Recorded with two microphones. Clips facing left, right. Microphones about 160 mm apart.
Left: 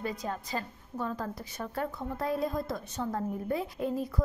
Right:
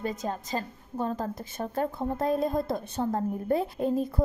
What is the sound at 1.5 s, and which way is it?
Speech, 30° right (ahead or behind).